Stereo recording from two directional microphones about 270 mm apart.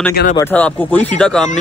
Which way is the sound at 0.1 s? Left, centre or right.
Left.